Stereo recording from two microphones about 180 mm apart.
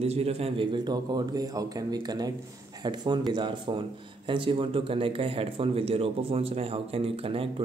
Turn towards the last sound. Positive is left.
turn(degrees=-30)  # may be behind; listen again after turning